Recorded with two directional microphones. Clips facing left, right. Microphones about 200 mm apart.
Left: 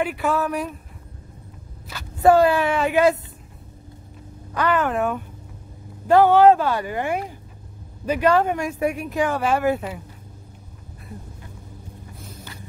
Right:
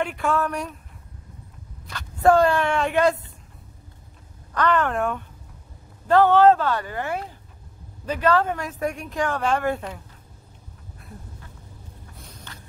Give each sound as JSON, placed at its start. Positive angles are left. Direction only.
{"t": 0.0, "sound": "speech", "side_deg": 5}
{"t": 1.9, "sound": "speech", "side_deg": 5}
{"t": 4.6, "sound": "speech", "side_deg": 5}